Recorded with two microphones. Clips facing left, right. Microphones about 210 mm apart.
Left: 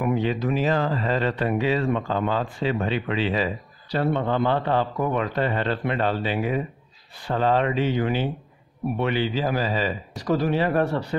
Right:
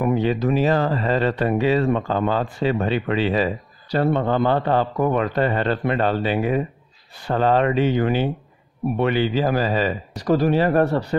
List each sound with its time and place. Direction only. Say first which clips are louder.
0.0 s speech: right 4 dB; 40° right (ahead or behind)